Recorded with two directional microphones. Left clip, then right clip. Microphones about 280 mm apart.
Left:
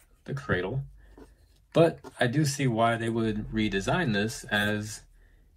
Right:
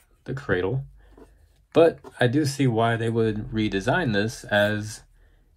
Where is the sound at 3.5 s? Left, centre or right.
Centre.